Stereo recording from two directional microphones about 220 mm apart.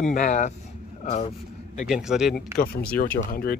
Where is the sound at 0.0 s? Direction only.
35° left (ahead or behind).